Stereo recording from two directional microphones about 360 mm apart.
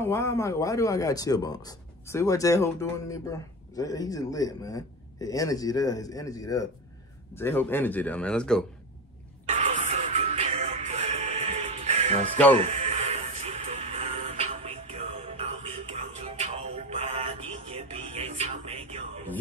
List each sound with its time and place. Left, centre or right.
0.0 s speech: centre
9.5 s music: centre